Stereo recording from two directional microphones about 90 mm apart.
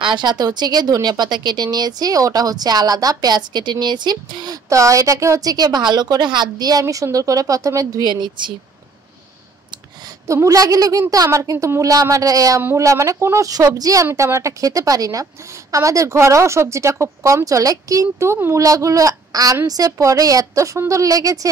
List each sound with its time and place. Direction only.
0.0 s speech: 60° right (ahead or behind)
4.6 s a woman's voice: 35° right (ahead or behind); by 8.5 s 60° right (ahead or behind)
10.2 s a woman's voice: 35° right (ahead or behind)